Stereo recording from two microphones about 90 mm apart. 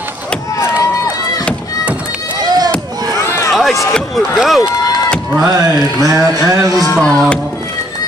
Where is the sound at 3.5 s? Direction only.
Centre (ahead or behind).